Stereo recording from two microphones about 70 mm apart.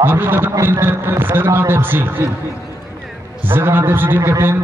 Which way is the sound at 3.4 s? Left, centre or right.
Right.